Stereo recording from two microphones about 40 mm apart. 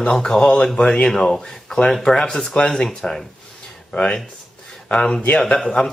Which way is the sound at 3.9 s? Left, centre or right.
Left.